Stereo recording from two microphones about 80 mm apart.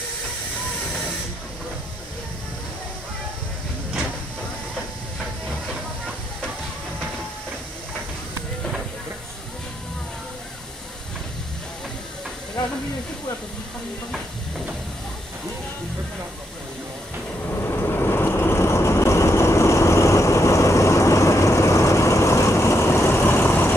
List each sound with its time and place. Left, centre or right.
17.6 s vehicle: left